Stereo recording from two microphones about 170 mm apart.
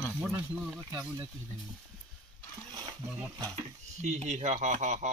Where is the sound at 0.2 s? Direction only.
5° right (ahead or behind).